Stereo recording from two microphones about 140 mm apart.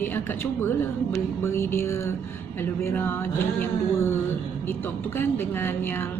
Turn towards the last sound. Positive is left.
turn(degrees=15)  # may be behind; listen again after turning